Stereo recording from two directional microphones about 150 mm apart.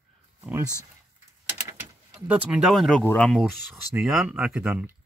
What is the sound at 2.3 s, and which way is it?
Speech, 5° right (ahead or behind).